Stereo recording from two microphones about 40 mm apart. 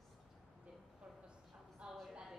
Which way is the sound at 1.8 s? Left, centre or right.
Right.